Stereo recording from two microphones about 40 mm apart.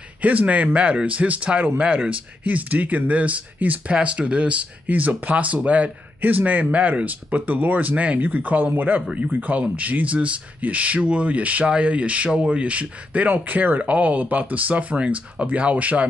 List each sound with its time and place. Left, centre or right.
0.2 s speech: right
13.3 s speech: right